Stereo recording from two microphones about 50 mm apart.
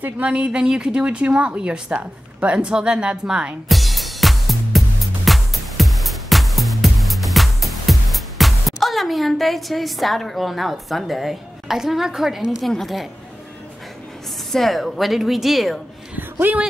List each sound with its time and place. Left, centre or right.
0.2 s a woman's voice: right
3.6 s music: centre
14.5 s a woman's voice: centre